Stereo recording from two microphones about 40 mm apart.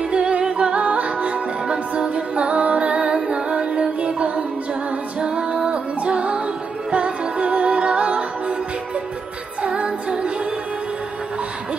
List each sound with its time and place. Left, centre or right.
0.1 s music: right
9.6 s music: right